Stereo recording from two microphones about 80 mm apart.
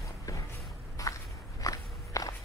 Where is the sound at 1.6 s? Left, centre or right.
Left.